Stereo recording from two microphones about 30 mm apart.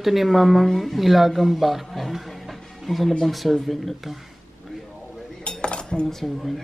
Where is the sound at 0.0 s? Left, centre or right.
Centre.